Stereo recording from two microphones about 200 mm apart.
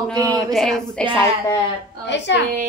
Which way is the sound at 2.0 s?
60° left (ahead or behind).